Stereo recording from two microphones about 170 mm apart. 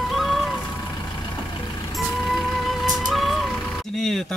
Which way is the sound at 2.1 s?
Centre (ahead or behind).